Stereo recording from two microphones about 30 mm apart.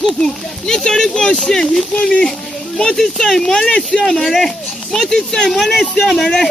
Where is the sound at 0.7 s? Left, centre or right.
Left.